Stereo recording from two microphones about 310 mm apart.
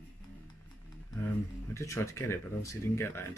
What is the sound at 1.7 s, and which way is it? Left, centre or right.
Speech, centre.